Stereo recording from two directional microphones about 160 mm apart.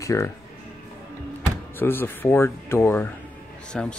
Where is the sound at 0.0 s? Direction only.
20° left (ahead or behind).